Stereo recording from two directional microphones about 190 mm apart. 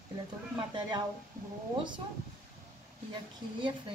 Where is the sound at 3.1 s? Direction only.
25° right (ahead or behind).